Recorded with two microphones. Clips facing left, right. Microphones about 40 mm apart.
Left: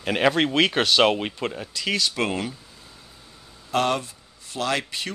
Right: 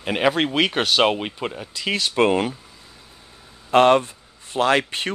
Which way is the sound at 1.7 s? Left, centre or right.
Centre.